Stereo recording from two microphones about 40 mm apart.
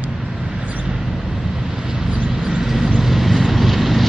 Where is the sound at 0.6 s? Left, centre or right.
Right.